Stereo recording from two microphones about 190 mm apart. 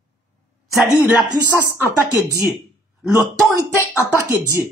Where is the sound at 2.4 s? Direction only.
Centre (ahead or behind).